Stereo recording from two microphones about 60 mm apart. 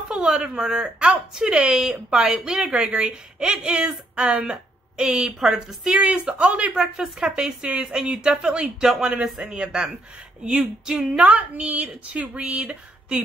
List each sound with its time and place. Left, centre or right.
0.1 s a woman's voice: centre
5.9 s a woman's voice: right